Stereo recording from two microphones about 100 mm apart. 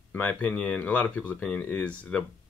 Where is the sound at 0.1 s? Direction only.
15° left (ahead or behind).